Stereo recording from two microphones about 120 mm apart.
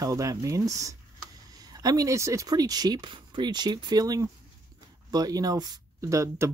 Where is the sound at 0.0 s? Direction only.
30° right (ahead or behind).